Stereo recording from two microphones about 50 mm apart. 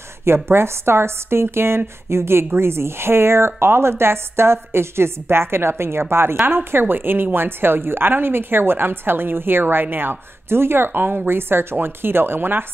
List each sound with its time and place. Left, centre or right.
0.2 s a woman's voice: right